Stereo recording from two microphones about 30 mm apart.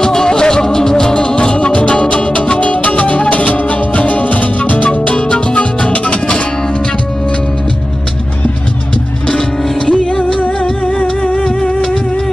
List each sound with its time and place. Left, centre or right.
0.0 s music: left
10.4 s music: left